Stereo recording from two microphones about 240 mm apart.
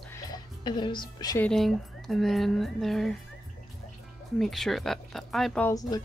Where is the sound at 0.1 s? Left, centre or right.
Centre.